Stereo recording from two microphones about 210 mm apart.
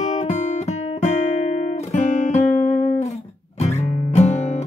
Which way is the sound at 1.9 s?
35° left (ahead or behind).